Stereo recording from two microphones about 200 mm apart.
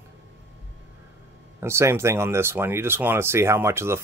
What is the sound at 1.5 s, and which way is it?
Speech, 15° right (ahead or behind).